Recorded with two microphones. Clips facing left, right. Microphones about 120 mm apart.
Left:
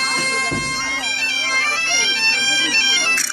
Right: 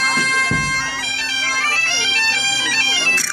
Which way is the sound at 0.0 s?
90° right.